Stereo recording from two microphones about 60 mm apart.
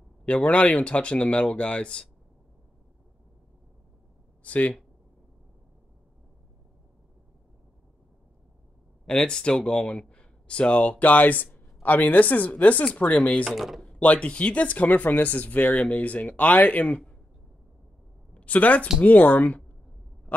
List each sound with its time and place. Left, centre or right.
0.2 s speech: centre
4.4 s speech: left
9.0 s speech: centre
13.4 s speech: centre
13.9 s speech: left
18.3 s speech: left